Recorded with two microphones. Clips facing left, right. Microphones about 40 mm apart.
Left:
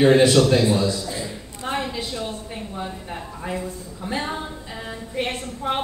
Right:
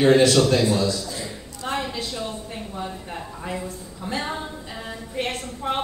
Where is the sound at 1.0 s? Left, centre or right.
Left.